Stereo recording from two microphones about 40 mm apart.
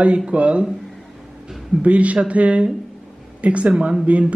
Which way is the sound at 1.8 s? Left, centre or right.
Right.